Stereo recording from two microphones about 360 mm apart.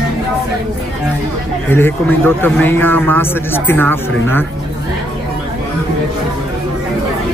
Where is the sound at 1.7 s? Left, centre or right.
Centre.